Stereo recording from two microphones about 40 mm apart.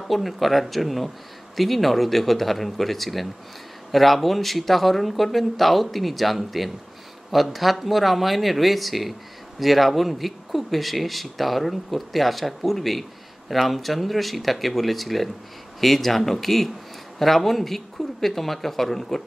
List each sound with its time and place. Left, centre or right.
0.1 s a man's voice: centre